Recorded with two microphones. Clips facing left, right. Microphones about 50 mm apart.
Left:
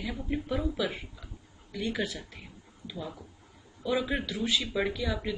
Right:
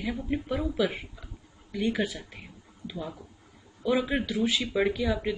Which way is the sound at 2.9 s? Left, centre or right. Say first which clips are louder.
Right 2 dB; centre.